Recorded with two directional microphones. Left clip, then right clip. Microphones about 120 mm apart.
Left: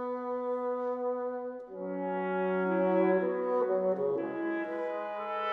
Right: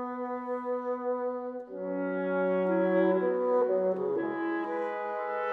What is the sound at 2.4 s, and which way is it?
Music, 25° right (ahead or behind).